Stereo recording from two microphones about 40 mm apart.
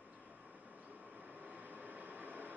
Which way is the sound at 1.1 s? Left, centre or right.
Right.